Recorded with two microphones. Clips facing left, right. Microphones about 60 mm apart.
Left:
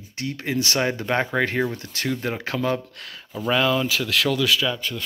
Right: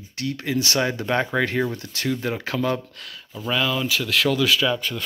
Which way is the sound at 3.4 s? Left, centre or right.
Left.